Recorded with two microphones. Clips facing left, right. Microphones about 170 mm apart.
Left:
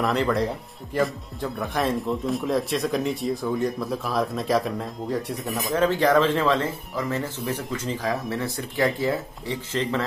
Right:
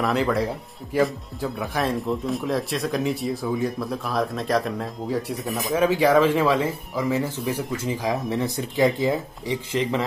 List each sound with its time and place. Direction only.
0.0 s speech: centre (ahead or behind)